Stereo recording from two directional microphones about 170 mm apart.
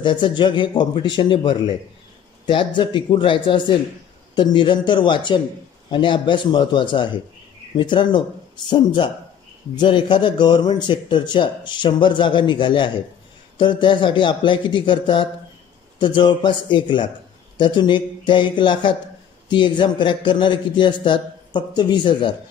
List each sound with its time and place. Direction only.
0.0 s speech: 25° left (ahead or behind)